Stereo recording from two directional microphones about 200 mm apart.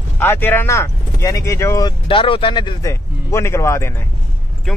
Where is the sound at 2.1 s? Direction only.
25° left (ahead or behind).